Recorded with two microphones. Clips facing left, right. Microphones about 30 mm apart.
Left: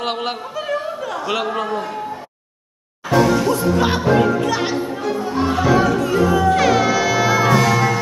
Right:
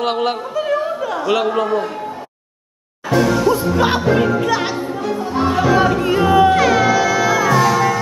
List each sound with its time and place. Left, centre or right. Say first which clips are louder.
0.0 s a man's voice: right 5 dB; centre
3.1 s music: right 1 dB; centre
5.9 s a sound: right 2 dB; right
6.5 s music: right 2 dB; centre